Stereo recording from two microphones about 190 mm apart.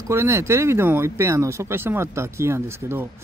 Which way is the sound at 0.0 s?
15° right (ahead or behind).